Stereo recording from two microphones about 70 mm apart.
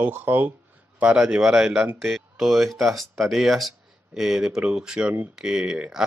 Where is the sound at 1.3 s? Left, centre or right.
Centre.